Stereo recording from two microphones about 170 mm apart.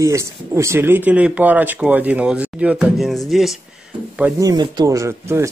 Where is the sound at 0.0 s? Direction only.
20° right (ahead or behind); by 3.5 s centre (ahead or behind).